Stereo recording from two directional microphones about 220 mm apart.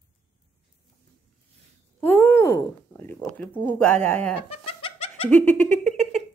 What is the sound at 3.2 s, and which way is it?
A woman's voice, centre (ahead or behind).